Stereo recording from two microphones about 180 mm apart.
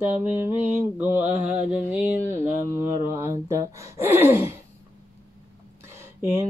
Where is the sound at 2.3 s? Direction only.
15° right (ahead or behind).